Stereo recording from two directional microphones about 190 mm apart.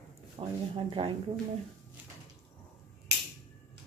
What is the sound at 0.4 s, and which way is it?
Speech, 25° right (ahead or behind).